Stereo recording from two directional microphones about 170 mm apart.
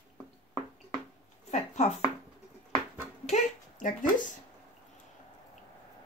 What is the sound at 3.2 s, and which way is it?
Speech, 45° left (ahead or behind).